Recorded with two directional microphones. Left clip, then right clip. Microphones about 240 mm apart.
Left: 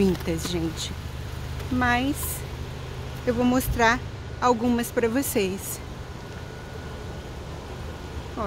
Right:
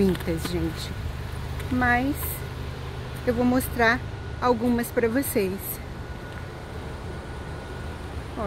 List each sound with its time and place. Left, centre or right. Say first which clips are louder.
0.0 s speech: even; centre
1.8 s speech: right 1 dB; centre
3.3 s speech: even; centre